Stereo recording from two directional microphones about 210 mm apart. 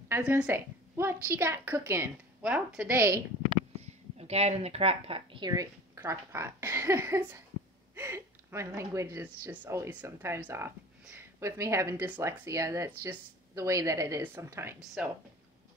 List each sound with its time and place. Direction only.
0.1 s a woman's voice: 5° right (ahead or behind)
3.4 s a woman's voice: 30° right (ahead or behind); by 14.8 s 10° right (ahead or behind)